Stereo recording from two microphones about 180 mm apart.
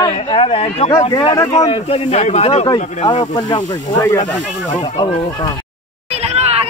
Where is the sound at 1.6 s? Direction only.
35° left (ahead or behind).